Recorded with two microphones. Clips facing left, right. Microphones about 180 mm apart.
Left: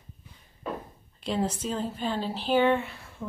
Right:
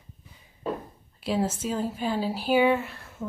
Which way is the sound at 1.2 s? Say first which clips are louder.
Right 2 dB; 5° right (ahead or behind).